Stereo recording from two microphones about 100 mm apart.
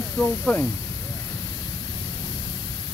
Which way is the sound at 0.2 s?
15° left (ahead or behind).